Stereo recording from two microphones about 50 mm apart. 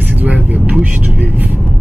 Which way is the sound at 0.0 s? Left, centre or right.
Right.